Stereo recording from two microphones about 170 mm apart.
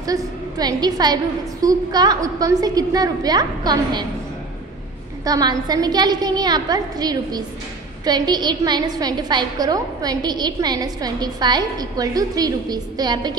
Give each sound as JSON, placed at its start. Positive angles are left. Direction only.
{"t": 0.6, "sound": "a woman's voice", "side_deg": -25}
{"t": 5.2, "sound": "a woman's voice", "side_deg": -20}